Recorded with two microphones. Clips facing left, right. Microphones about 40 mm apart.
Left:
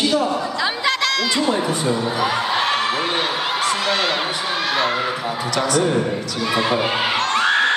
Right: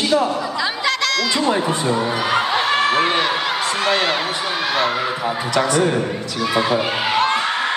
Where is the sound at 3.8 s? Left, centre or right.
Right.